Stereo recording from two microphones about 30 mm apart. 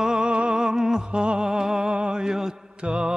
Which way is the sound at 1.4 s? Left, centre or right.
Centre.